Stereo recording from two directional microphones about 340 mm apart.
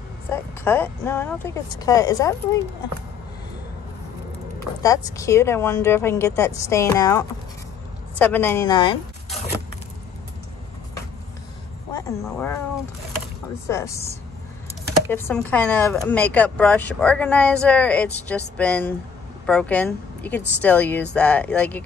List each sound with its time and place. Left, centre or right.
0.3 s speech: centre
4.6 s speech: centre
11.9 s speech: centre
13.7 s speech: centre